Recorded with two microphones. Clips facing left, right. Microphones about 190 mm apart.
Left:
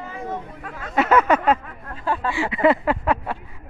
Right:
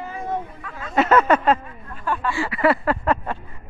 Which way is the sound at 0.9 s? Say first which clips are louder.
Right 1 dB; 10° left (ahead or behind).